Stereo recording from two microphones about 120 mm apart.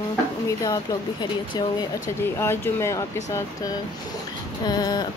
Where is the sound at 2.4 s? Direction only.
20° left (ahead or behind).